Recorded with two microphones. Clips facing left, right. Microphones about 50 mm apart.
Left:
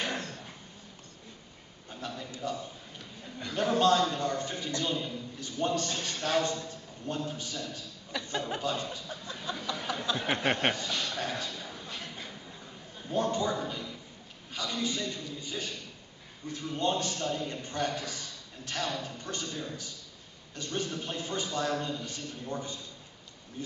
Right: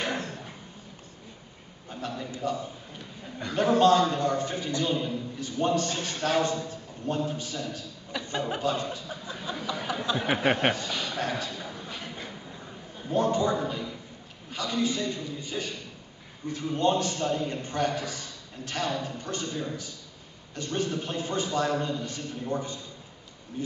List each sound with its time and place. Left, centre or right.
0.0 s dog: centre
1.9 s a sound: centre
3.6 s a man's voice: centre
7.3 s chuckle: centre
14.5 s a man's voice: centre